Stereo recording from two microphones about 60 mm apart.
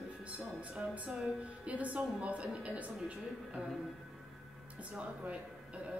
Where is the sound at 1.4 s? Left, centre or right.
Right.